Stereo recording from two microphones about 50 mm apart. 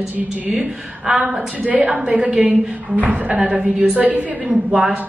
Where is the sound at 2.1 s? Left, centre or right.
Right.